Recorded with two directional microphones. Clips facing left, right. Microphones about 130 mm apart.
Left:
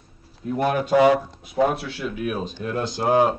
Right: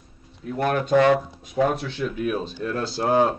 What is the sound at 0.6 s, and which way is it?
Speech, 10° left (ahead or behind).